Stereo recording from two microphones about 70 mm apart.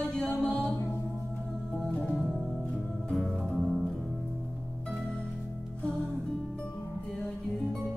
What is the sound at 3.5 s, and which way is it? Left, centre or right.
Music, centre.